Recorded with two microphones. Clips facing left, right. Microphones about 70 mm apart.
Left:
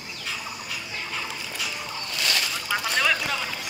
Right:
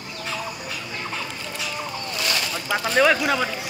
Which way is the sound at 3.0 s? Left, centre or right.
Right.